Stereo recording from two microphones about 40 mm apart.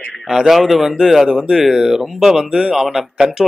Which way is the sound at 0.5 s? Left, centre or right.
Centre.